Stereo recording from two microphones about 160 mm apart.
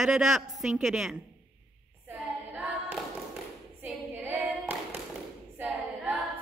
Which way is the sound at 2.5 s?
10° right (ahead or behind).